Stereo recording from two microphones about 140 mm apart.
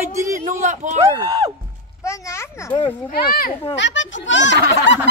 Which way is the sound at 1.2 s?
25° right (ahead or behind).